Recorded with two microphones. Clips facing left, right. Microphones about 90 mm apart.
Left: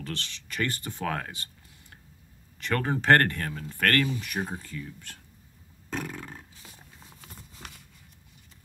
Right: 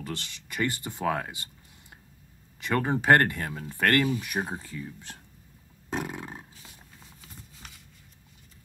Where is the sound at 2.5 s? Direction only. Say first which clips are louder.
Right 2 dB; 15° right (ahead or behind).